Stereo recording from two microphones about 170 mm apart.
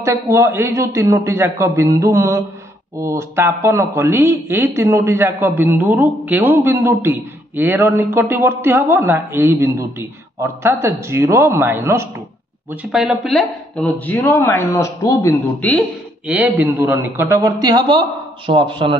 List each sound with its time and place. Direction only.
0.0 s a man's voice: 15° right (ahead or behind)
12.9 s speech: centre (ahead or behind)
16.3 s a man's voice: 10° right (ahead or behind); by 18.9 s 30° right (ahead or behind)